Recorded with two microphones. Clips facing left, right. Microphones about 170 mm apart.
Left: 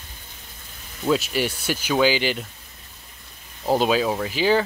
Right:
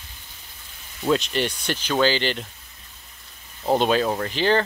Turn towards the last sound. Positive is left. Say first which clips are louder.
# left 1 dB
turn(degrees=5)  # may be behind; listen again after turning